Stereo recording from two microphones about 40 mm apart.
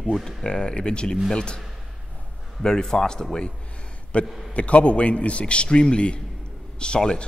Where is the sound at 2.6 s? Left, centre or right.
Centre.